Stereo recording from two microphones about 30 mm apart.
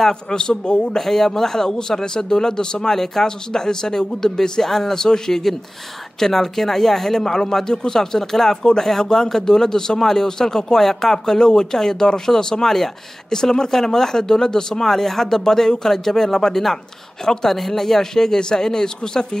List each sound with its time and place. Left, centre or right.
0.1 s a man's voice: left
0.9 s a man's voice: centre